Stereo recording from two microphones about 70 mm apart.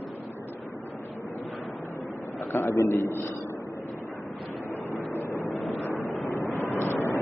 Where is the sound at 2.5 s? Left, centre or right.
Left.